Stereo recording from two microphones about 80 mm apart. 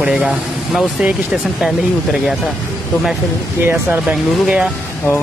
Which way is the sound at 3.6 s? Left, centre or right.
Right.